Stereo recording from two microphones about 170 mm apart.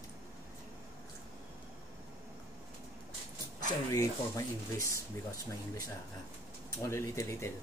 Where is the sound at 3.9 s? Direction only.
20° left (ahead or behind).